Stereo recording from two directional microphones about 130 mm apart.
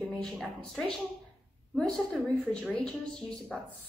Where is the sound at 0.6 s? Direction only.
5° left (ahead or behind).